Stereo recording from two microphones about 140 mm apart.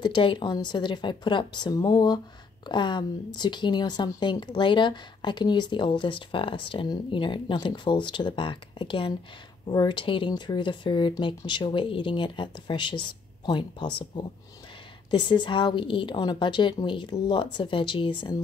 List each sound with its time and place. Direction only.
0.0 s a woman's voice: 35° left (ahead or behind)